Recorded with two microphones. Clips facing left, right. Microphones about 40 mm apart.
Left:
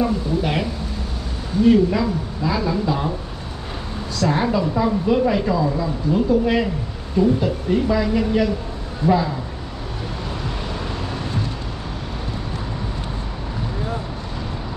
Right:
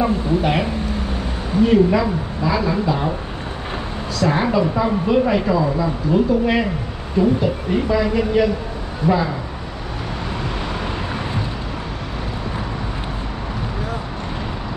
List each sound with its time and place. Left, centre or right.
0.0 s a woman's voice: centre
1.7 s a woman's voice: centre
4.2 s a woman's voice: centre